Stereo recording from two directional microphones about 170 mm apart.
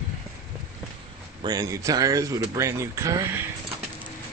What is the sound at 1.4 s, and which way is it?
Speech, 20° right (ahead or behind).